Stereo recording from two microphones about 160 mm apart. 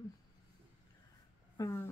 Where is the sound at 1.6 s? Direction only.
15° left (ahead or behind).